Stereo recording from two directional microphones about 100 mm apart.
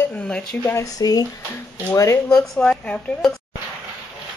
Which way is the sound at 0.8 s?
40° left (ahead or behind).